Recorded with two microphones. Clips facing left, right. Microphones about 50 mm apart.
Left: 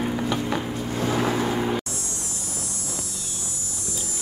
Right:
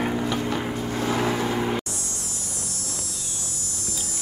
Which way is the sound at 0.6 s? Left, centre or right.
Centre.